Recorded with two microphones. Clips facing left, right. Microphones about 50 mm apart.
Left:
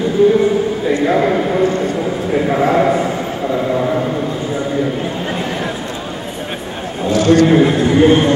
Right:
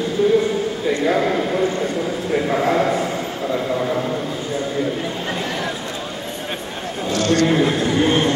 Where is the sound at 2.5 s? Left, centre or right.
Centre.